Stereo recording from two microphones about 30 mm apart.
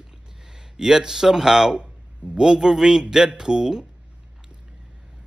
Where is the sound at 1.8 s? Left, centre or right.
Right.